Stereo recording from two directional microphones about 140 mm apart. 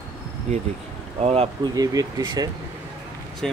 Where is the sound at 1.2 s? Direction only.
45° right (ahead or behind).